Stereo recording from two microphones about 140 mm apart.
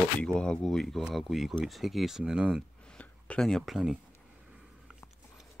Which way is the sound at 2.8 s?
10° left (ahead or behind).